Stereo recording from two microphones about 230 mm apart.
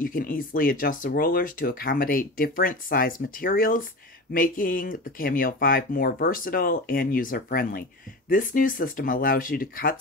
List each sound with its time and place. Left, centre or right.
0.0 s speech: left